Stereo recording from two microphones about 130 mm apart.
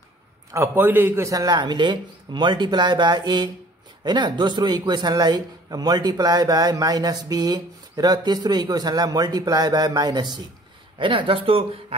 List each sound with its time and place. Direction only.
0.5 s speech: 20° right (ahead or behind); by 11.8 s 45° right (ahead or behind)